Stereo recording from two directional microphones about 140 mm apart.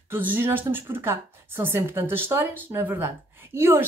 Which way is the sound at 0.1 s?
15° right (ahead or behind).